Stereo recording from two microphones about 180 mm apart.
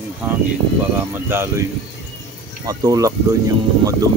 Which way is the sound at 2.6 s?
20° right (ahead or behind).